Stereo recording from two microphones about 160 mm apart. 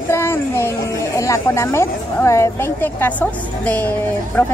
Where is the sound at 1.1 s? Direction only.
20° left (ahead or behind).